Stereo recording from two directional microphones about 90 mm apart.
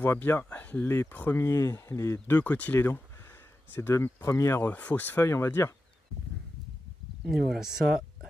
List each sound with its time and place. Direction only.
0.0 s speech: 25° left (ahead or behind)
1.4 s speech: 35° left (ahead or behind)
4.0 s speech: 30° left (ahead or behind)
4.6 s speech: 15° left (ahead or behind); by 5.7 s 30° left (ahead or behind)
7.2 s speech: 5° right (ahead or behind)